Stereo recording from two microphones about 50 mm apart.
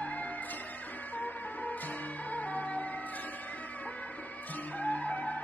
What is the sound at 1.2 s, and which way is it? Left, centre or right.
Music, left.